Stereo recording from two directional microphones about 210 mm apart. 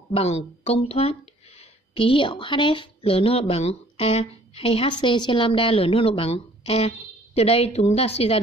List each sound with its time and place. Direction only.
0.1 s a woman's voice: 30° left (ahead or behind)